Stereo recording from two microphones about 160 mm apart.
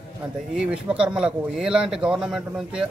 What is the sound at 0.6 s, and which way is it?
Speech, 5° right (ahead or behind).